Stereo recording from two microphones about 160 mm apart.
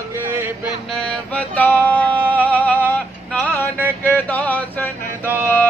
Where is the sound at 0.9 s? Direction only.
5° left (ahead or behind).